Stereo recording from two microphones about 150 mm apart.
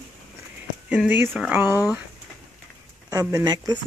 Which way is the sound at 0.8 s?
10° right (ahead or behind).